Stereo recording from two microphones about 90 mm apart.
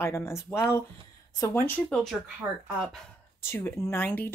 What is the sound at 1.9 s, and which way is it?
Speech, 5° left (ahead or behind).